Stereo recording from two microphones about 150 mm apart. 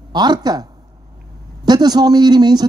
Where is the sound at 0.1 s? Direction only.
30° right (ahead or behind).